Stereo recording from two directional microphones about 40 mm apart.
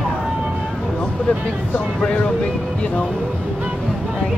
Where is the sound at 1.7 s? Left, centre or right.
Left.